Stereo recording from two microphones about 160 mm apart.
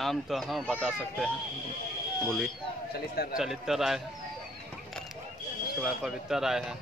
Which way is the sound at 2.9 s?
75° left (ahead or behind).